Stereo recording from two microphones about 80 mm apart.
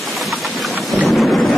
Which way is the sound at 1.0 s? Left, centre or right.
Centre.